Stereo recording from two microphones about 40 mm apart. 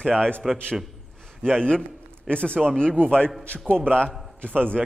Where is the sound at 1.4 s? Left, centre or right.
Centre.